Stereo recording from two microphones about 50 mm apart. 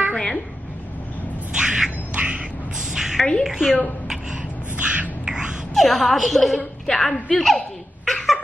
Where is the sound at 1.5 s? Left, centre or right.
Centre.